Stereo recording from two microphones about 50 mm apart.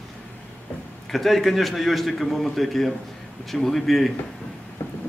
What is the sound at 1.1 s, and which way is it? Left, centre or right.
A man's voice, centre.